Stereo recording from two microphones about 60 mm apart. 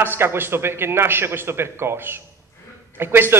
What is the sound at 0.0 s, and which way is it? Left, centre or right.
Speech, right.